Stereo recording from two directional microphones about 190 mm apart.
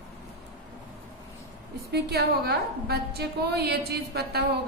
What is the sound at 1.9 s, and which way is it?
A woman's voice, 55° right (ahead or behind).